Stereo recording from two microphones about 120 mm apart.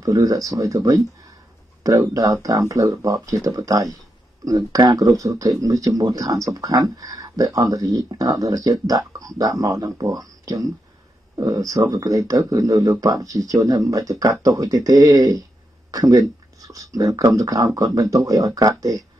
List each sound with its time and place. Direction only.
0.0 s speech: 25° right (ahead or behind)